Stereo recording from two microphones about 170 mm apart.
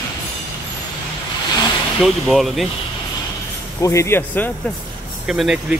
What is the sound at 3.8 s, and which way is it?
Speech, 20° left (ahead or behind).